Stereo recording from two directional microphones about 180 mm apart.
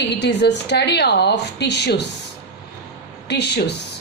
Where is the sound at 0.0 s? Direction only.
75° left (ahead or behind).